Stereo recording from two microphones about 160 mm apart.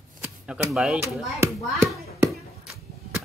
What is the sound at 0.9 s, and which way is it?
Speech, 15° right (ahead or behind).